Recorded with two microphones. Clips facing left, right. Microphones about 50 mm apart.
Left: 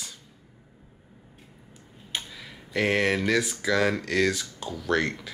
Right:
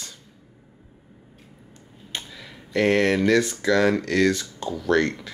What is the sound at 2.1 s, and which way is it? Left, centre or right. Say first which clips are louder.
Speech: even; centre.